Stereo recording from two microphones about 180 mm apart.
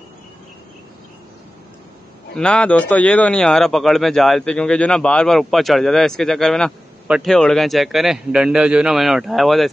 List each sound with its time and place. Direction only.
2.3 s speech: 5° left (ahead or behind)